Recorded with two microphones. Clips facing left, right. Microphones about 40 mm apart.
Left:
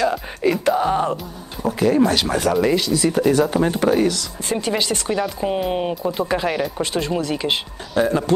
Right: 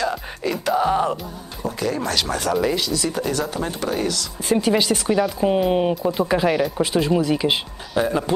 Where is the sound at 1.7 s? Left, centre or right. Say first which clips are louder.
Left 7 dB; left.